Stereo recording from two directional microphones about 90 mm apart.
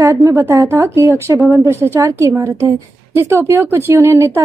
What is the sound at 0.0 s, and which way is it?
A woman's voice, 30° right (ahead or behind).